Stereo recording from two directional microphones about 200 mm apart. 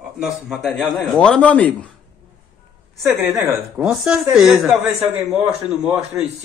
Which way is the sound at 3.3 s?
5° right (ahead or behind).